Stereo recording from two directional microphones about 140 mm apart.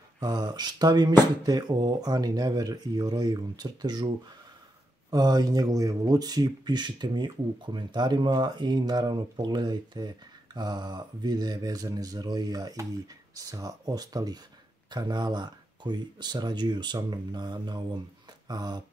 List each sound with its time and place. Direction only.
0.2 s speech: 30° right (ahead or behind)
5.1 s speech: 25° right (ahead or behind)